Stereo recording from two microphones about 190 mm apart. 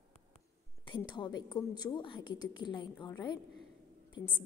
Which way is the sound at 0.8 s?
25° left (ahead or behind).